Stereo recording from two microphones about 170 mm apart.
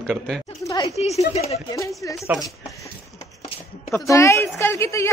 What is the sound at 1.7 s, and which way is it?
Speech, 20° left (ahead or behind).